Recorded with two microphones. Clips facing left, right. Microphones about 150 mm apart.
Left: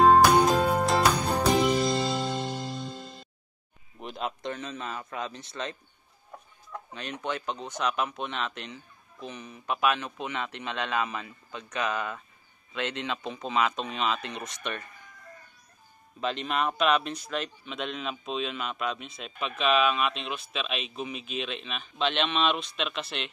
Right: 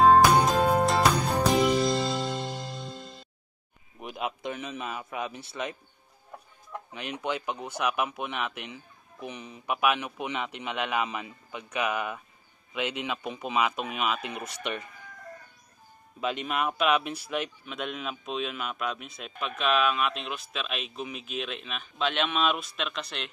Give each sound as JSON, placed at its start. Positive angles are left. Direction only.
{"t": 0.0, "sound": "music", "side_deg": 0}
{"t": 4.0, "sound": "a man's voice", "side_deg": -5}
{"t": 6.9, "sound": "speech", "side_deg": -15}
{"t": 16.2, "sound": "speech", "side_deg": -5}